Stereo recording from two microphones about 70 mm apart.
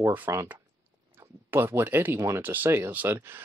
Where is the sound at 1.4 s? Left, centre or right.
Right.